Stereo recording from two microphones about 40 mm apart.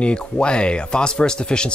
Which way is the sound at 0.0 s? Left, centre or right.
Left.